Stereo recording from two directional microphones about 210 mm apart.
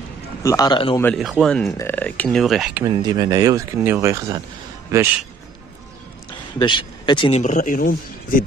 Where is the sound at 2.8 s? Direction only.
20° right (ahead or behind).